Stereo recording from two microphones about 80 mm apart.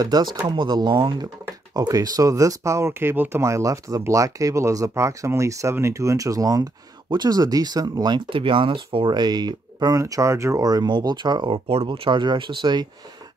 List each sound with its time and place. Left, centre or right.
0.0 s speech: right
7.1 s speech: right